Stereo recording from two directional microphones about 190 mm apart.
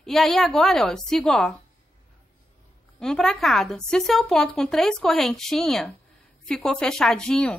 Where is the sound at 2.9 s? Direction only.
5° left (ahead or behind).